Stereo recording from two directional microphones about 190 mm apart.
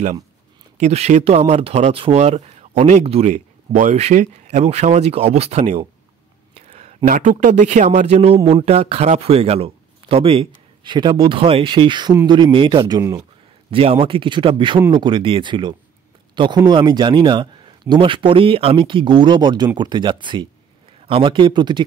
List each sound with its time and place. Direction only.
0.7 s speech: 35° right (ahead or behind)